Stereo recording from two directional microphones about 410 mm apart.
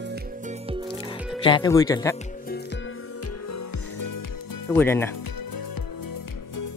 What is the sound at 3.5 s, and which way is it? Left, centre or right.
Music, left.